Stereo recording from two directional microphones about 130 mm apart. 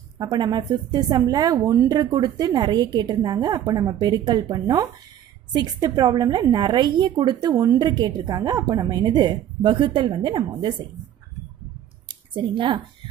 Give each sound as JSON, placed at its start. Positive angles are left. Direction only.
{"t": 0.2, "sound": "a woman's voice", "side_deg": -35}
{"t": 12.1, "sound": "speech", "side_deg": -40}